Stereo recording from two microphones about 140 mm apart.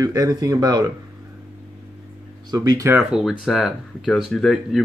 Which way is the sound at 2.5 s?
25° right (ahead or behind).